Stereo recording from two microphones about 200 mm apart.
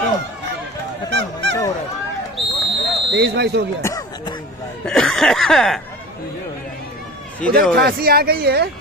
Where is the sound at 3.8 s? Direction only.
20° left (ahead or behind).